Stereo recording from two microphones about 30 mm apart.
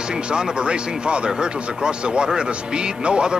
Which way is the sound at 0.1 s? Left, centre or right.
Right.